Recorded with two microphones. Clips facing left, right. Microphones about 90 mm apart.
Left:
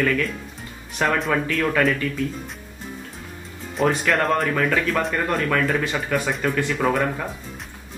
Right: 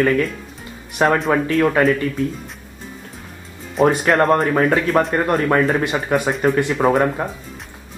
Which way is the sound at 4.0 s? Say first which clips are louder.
Right 5 dB; 30° right (ahead or behind).